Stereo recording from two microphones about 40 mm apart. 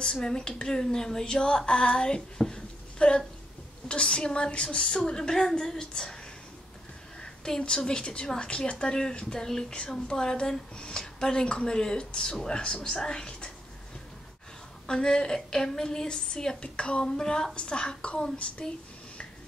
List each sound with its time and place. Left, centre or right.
0.0 s a woman's voice: centre
7.2 s a woman's voice: centre
14.9 s a woman's voice: centre
16.6 s a woman's voice: left
17.0 s a woman's voice: centre